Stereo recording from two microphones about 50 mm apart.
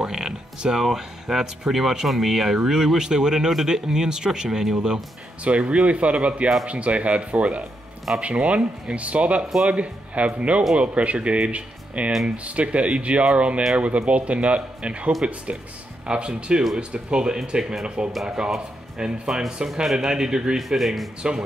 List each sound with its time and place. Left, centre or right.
0.0 s speech: centre
5.4 s speech: right
18.1 s speech: centre
20.5 s speech: centre